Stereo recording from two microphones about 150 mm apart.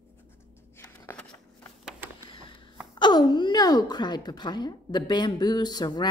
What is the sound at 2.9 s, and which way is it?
Speech, 30° left (ahead or behind).